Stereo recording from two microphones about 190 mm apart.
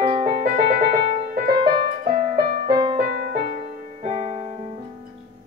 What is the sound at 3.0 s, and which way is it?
Music, 50° right (ahead or behind).